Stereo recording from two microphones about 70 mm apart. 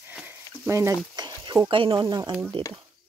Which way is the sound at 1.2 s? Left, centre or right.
Right.